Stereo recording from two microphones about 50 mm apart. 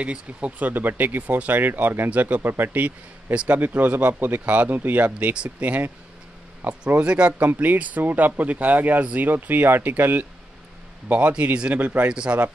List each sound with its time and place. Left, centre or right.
0.0 s speech: right
2.0 s speech: right
5.3 s speech: right
7.3 s speech: right
11.7 s speech: right
12.1 s speech: centre